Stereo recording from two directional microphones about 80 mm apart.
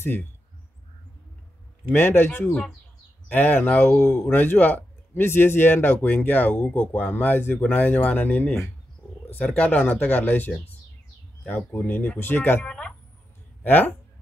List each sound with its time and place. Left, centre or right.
0.0 s a man's voice: left
1.9 s a man's voice: left
12.6 s speech: centre